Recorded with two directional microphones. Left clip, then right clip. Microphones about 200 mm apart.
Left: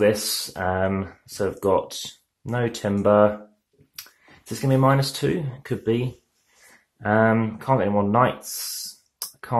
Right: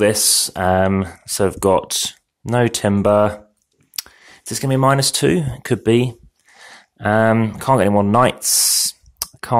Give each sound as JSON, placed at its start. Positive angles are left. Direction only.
{"t": 0.0, "sound": "speech", "side_deg": -45}
{"t": 4.0, "sound": "clicking", "side_deg": -50}
{"t": 4.5, "sound": "speech", "side_deg": -45}
{"t": 9.2, "sound": "clicking", "side_deg": -50}